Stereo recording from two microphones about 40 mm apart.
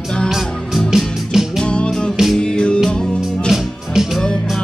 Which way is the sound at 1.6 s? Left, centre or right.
Left.